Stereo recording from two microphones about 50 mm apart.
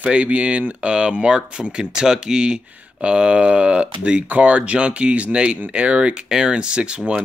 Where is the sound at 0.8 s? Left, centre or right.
Centre.